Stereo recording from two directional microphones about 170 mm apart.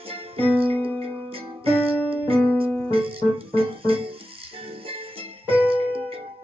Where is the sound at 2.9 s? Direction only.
35° right (ahead or behind).